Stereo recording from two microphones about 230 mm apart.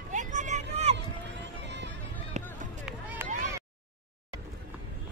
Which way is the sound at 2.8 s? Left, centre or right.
Centre.